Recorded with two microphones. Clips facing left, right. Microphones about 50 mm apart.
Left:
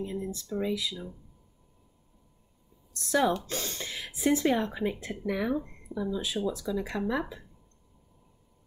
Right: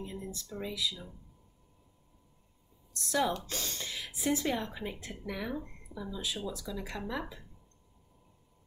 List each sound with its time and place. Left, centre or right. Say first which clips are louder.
0.0 s a sound: left 7 dB; left
0.5 s speech: left 5 dB; left
2.9 s speech: left 5 dB; left
6.2 s speech: left 7 dB; left